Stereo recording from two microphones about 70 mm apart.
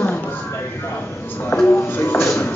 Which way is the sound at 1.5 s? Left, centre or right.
Left.